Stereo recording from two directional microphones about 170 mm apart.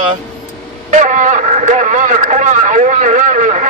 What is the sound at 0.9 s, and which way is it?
A man's voice, 45° right (ahead or behind).